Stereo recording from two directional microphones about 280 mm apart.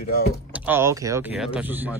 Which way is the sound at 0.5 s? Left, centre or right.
Centre.